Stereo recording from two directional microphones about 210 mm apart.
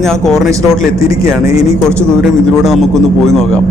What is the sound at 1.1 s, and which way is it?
Speech, 15° right (ahead or behind).